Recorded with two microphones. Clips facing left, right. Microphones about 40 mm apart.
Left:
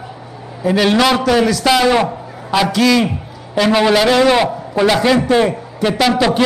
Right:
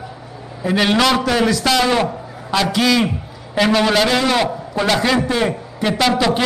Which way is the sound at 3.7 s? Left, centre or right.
Centre.